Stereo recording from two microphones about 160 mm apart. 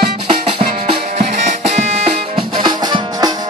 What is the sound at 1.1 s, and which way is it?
Music, 45° right (ahead or behind).